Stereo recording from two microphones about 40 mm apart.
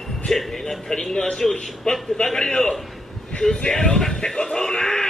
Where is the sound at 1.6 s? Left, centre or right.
Centre.